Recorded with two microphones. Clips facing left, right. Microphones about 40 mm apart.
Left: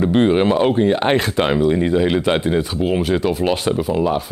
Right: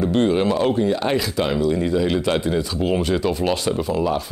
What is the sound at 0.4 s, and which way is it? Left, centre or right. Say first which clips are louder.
Speech: left 4 dB; left.